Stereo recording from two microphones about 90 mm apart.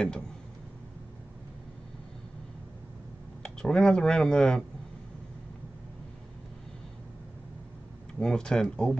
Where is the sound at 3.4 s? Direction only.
5° left (ahead or behind).